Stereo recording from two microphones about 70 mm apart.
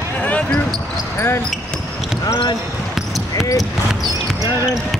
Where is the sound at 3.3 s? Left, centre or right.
Left.